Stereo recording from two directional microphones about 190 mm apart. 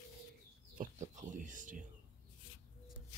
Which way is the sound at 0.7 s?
40° right (ahead or behind).